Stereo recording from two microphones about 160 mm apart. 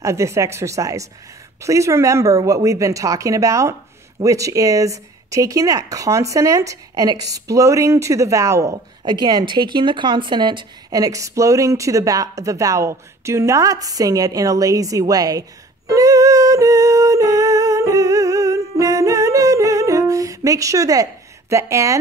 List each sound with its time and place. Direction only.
0.0 s speech: 20° right (ahead or behind)
15.9 s humming: 20° right (ahead or behind)